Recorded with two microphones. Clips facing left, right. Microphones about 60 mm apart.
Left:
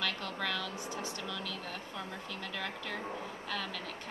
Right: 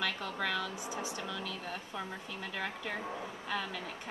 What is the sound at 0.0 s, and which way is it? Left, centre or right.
Speech, centre.